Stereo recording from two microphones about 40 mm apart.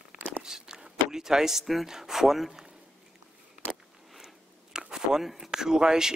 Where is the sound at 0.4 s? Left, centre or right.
Centre.